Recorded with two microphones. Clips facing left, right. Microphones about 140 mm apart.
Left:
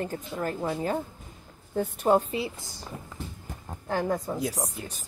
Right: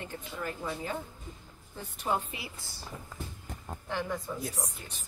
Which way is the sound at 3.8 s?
40° left (ahead or behind).